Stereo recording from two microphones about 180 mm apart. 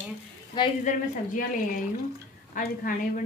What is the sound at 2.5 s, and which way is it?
Speech, 50° left (ahead or behind).